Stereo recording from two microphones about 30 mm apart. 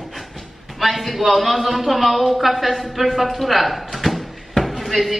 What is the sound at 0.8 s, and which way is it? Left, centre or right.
A man's voice, centre.